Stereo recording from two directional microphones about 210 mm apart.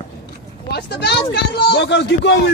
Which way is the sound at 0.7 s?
50° left (ahead or behind).